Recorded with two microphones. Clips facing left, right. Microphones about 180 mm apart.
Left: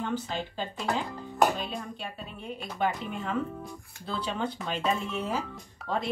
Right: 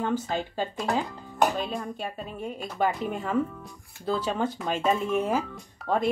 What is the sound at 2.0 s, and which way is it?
Speech, 45° right (ahead or behind).